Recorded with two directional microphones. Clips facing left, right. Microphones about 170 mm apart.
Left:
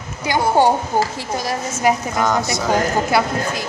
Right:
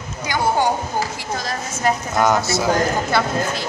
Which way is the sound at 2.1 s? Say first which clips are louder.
Right 1 dB; centre (ahead or behind).